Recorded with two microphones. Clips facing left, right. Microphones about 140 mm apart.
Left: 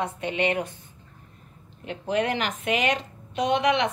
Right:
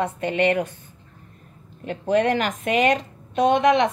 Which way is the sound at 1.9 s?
45° right (ahead or behind).